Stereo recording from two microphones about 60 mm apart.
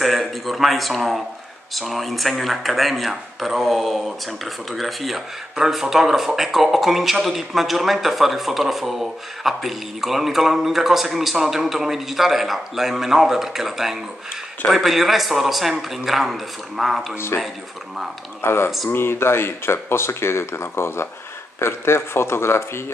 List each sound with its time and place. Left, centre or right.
0.0 s speech: centre
17.3 s speech: left